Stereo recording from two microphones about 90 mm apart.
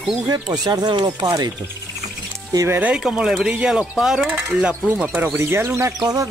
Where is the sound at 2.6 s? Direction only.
25° right (ahead or behind).